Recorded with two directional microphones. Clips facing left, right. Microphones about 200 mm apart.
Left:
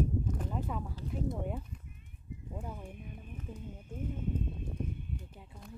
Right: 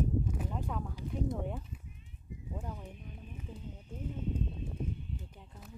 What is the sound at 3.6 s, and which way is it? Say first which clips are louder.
Horse: left 3 dB; 50° left (ahead or behind).